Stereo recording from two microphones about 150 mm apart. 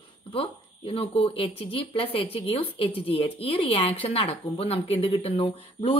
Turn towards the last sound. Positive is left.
turn(degrees=40)  # may be behind; listen again after turning